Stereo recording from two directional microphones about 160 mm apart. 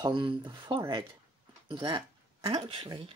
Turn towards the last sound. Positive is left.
turn(degrees=-30)  # may be behind; listen again after turning